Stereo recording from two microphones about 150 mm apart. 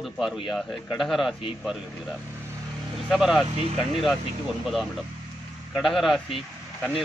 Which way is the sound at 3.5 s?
45° right (ahead or behind).